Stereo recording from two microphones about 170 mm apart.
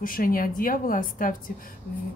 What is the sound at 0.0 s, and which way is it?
A woman's voice, 55° left (ahead or behind).